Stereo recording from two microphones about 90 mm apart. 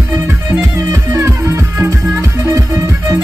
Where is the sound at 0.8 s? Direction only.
40° right (ahead or behind).